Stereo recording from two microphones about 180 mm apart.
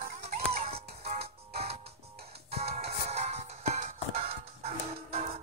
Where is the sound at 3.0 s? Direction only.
35° right (ahead or behind).